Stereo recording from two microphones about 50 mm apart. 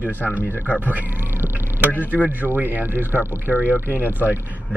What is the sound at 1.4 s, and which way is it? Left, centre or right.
Vehicle, right.